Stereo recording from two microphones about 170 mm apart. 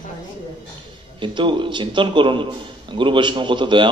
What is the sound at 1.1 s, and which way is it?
A man's voice, 30° right (ahead or behind).